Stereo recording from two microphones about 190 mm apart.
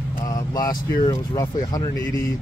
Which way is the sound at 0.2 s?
20° left (ahead or behind).